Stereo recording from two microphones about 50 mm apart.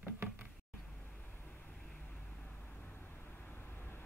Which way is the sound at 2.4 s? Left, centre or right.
Left.